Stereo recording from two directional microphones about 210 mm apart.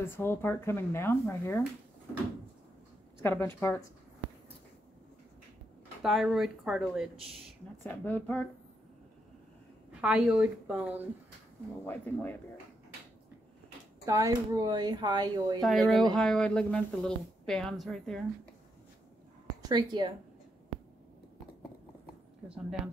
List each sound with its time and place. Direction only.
0.1 s speech: 10° left (ahead or behind)
3.2 s speech: 10° left (ahead or behind)
6.0 s a woman's voice: centre (ahead or behind)
7.8 s speech: 10° left (ahead or behind)
9.9 s a woman's voice: 5° right (ahead or behind)
11.8 s speech: 10° left (ahead or behind)
14.0 s speech: 15° right (ahead or behind)
15.6 s a woman's voice: centre (ahead or behind)
19.7 s speech: 20° right (ahead or behind)
22.4 s speech: 5° right (ahead or behind)